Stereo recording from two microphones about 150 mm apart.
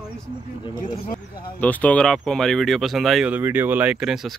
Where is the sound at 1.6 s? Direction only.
10° left (ahead or behind).